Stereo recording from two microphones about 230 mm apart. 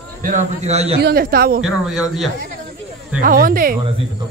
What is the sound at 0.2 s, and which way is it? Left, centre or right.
Speech, right.